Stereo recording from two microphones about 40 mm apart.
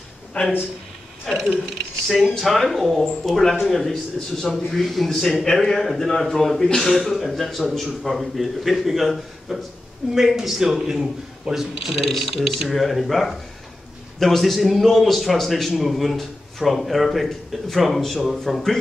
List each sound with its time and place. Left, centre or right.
0.3 s speech: left
1.3 s speech: centre
2.4 s a man's voice: centre